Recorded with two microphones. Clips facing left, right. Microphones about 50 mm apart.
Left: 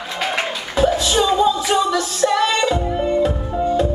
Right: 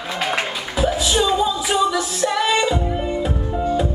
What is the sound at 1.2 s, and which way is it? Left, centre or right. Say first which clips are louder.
Music: left 3 dB; centre.